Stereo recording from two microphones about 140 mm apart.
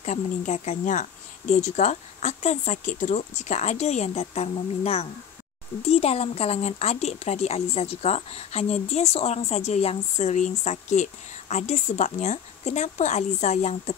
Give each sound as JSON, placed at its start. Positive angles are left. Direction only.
{"t": 0.0, "sound": "speech", "side_deg": 60}